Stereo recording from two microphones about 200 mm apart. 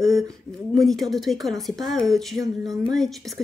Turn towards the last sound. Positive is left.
turn(degrees=0)  # may be behind; listen again after turning